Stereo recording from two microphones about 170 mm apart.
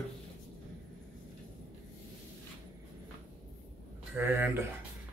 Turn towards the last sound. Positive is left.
turn(degrees=-10)  # may be behind; listen again after turning